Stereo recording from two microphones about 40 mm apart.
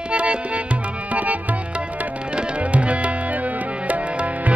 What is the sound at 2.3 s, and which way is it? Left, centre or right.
Tabla, right.